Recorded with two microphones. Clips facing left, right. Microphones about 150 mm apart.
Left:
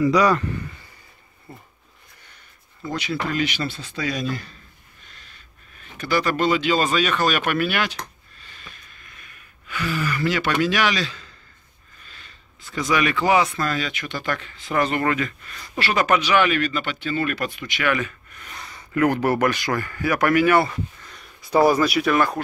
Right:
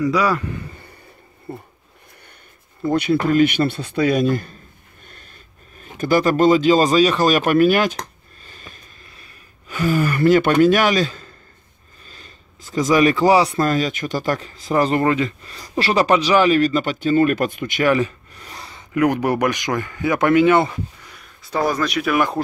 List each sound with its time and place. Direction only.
0.0 s a man's voice: 5° right (ahead or behind)
1.5 s dog: 30° right (ahead or behind)
2.9 s a man's voice: 55° right (ahead or behind)
5.8 s speech: 45° right (ahead or behind)
8.5 s a sound: 40° right (ahead or behind)
12.1 s speech: 40° right (ahead or behind)
17.9 s speech: 35° right (ahead or behind); by 21.2 s 15° right (ahead or behind)
21.4 s speech: 10° left (ahead or behind)